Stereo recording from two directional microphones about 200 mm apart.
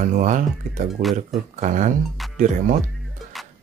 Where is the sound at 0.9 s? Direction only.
Centre (ahead or behind).